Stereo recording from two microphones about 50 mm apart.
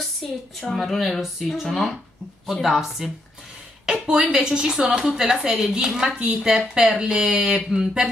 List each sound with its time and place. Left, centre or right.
0.2 s a woman's voice: centre